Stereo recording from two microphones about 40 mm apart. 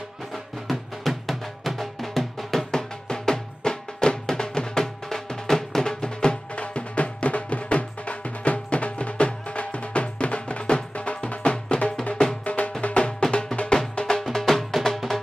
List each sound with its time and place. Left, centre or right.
0.7 s music: centre
2.7 s music: centre
14.3 s music: centre